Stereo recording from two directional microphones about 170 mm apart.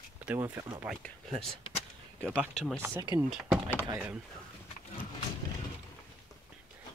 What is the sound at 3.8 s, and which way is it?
Speech, 15° right (ahead or behind).